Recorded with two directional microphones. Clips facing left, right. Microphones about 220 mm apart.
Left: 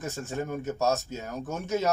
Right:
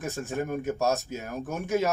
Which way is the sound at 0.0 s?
15° right (ahead or behind).